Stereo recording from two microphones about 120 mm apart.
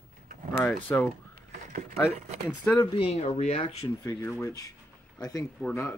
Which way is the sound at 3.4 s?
60° left (ahead or behind).